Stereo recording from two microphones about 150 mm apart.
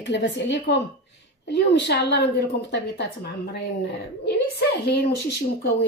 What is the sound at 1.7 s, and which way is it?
A woman's voice, 90° left.